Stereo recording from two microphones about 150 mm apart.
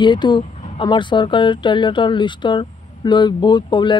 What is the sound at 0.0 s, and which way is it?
Speech, 30° left (ahead or behind).